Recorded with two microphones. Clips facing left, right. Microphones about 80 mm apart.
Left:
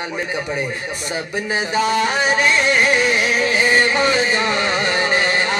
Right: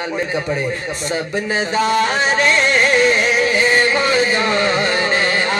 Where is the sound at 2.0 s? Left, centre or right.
Centre.